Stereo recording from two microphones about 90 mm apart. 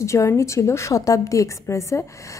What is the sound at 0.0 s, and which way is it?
A woman's voice, 35° left (ahead or behind).